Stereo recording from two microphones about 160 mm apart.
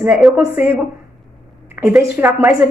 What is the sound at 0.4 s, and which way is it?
Speech, 15° right (ahead or behind).